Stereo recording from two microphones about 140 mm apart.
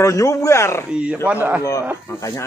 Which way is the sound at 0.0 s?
20° left (ahead or behind).